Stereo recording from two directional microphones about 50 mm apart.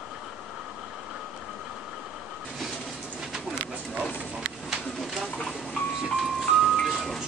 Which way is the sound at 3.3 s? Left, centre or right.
Centre.